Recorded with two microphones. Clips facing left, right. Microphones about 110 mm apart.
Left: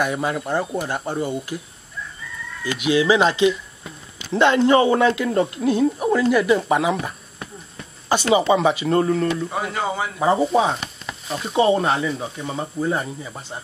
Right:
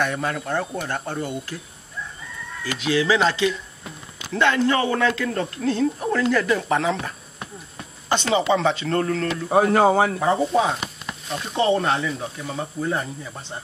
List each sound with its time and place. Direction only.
0.0 s speech: 10° left (ahead or behind)
2.6 s speech: 15° left (ahead or behind)
9.5 s speech: 50° right (ahead or behind)
10.2 s speech: 10° left (ahead or behind)